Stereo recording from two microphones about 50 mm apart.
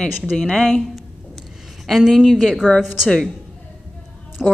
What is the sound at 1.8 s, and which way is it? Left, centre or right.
Speech, centre.